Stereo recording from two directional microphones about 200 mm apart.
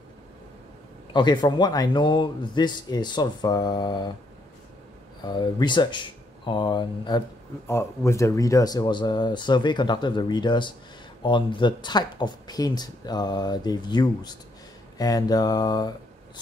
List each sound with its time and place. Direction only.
1.1 s speech: 20° left (ahead or behind)
5.2 s speech: 20° left (ahead or behind)